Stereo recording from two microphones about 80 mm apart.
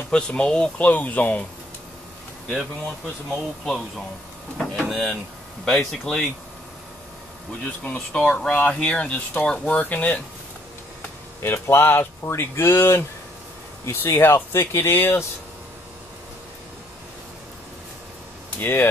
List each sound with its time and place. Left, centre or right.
0.1 s speech: centre
4.6 s speech: centre
7.8 s speech: centre
11.4 s speech: left
18.6 s speech: left